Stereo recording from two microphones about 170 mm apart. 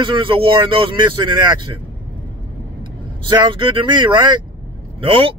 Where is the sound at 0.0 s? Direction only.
30° right (ahead or behind).